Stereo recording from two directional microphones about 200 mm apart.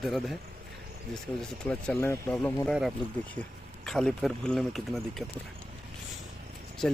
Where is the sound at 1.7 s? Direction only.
10° left (ahead or behind).